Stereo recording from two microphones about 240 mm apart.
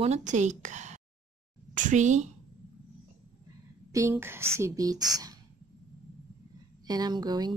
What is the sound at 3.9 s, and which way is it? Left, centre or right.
Speech, centre.